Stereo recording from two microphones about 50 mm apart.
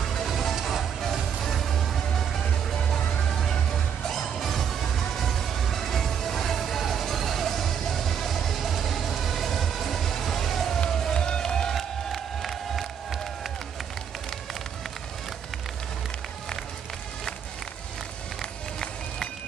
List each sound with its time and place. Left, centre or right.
0.0 s music: centre
10.9 s crowd: centre